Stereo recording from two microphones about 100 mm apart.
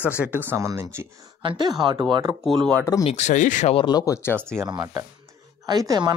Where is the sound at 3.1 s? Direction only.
85° left.